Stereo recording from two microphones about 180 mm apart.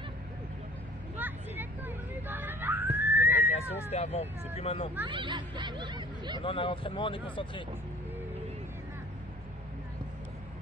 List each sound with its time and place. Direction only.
1.1 s hubbub: 10° right (ahead or behind)
3.9 s speech: 35° left (ahead or behind)
5.0 s speech: 25° right (ahead or behind)
6.4 s speech: 30° left (ahead or behind)